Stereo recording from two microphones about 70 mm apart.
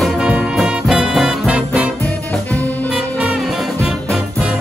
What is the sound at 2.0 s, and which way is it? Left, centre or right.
Music, left.